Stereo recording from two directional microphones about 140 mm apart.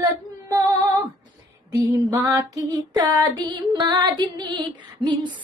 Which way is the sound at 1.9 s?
20° right (ahead or behind).